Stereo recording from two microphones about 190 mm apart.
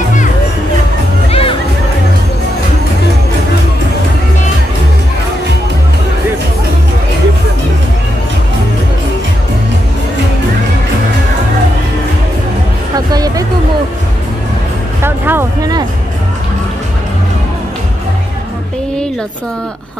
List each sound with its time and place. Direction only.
1.3 s music: 30° left (ahead or behind)
12.9 s music: 20° right (ahead or behind)
15.0 s vehicle: 10° right (ahead or behind)